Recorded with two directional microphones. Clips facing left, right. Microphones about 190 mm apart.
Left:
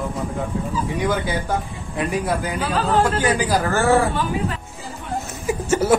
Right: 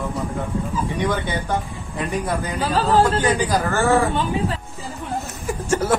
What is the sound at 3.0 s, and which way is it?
Speech, centre (ahead or behind).